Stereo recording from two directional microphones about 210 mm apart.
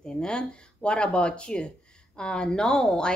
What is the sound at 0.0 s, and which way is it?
A woman's voice, 5° left (ahead or behind).